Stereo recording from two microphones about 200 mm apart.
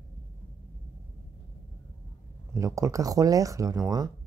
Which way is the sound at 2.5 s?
15° right (ahead or behind).